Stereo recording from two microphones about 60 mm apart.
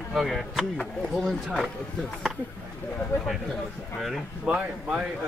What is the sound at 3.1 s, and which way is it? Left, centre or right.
Speech, left.